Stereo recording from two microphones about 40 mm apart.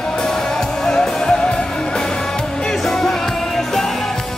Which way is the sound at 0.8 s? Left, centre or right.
Centre.